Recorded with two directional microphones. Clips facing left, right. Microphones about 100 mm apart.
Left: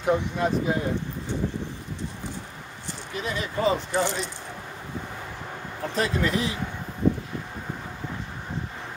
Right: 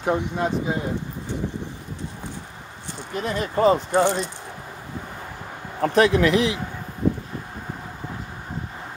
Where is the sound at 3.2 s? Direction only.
40° right (ahead or behind).